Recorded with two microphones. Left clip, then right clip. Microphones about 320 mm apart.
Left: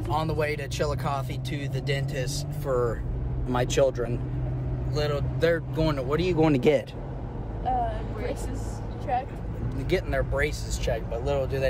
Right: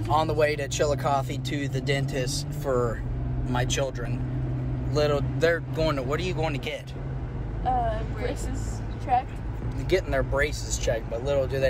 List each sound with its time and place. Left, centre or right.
0.1 s speech: centre
3.4 s speech: left
4.9 s speech: centre; by 6.8 s left
9.8 s speech: centre